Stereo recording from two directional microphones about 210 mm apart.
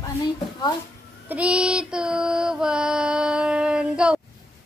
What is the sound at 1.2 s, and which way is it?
Mantra, 5° right (ahead or behind).